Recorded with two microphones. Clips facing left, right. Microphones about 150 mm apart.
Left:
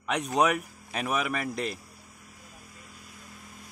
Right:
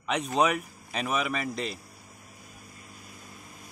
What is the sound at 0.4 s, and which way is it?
Speech, centre (ahead or behind).